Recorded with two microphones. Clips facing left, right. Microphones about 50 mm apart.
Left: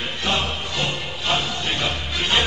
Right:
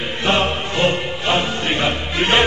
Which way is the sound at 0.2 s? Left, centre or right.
Right.